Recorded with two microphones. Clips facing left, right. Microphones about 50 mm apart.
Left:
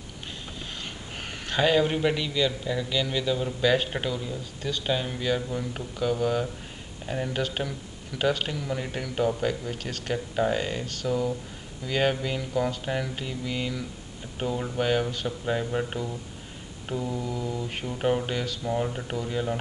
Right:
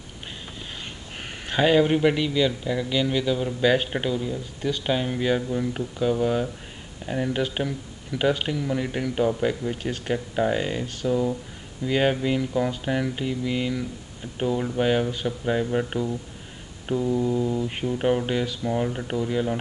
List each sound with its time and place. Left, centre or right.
1.4 s a man's voice: centre
17.0 s mantra: right
17.6 s a man's voice: centre